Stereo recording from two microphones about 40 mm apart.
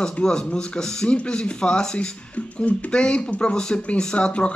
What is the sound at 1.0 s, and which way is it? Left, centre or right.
Speech, left.